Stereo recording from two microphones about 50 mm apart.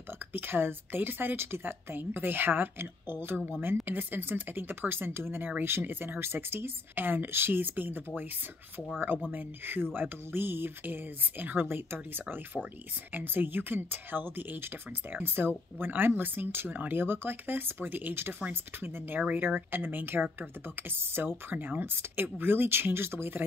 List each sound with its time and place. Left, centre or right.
0.3 s speech: right
3.8 s speech: right
9.3 s speech: right
12.6 s speech: centre
13.1 s speech: right
19.1 s speech: right